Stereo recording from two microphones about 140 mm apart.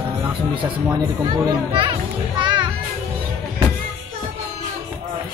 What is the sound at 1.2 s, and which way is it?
A child's voice, 30° right (ahead or behind).